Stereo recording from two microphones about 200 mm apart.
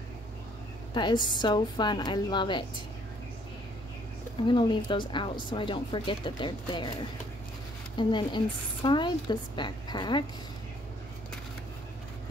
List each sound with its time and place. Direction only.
0.9 s speech: 20° left (ahead or behind)
4.5 s speech: 20° left (ahead or behind)